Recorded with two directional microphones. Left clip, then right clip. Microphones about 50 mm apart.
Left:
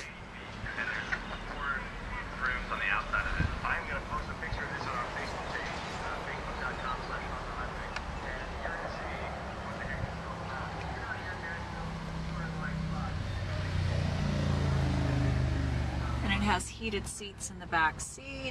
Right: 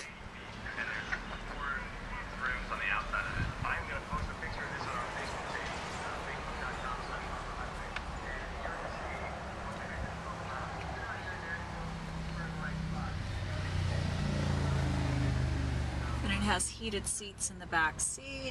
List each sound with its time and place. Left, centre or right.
0.7 s duck: centre
2.4 s vehicle: left
14.7 s vehicle: centre
16.5 s a woman's voice: centre